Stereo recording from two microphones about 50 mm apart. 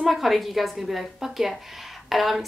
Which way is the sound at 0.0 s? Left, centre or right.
Centre.